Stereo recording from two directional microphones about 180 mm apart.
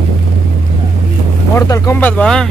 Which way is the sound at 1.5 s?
20° left (ahead or behind).